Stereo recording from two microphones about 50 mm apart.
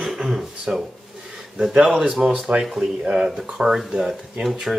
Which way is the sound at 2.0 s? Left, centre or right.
Right.